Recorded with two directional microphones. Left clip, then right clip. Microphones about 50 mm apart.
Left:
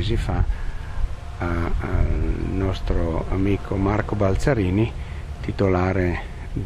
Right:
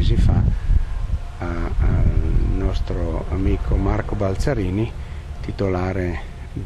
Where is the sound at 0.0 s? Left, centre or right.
Left.